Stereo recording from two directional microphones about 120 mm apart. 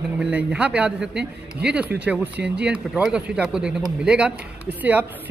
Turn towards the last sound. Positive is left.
turn(degrees=-15)  # may be behind; listen again after turning